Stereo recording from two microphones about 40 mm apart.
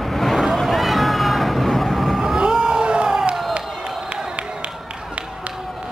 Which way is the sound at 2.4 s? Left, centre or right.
Right.